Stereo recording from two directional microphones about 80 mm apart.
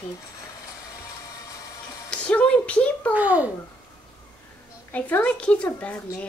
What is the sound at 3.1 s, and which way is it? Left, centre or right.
Speech, centre.